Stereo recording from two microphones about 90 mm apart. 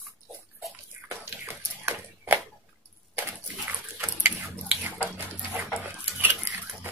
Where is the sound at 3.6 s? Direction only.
20° right (ahead or behind).